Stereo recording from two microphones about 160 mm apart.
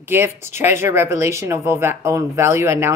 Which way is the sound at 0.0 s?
15° right (ahead or behind).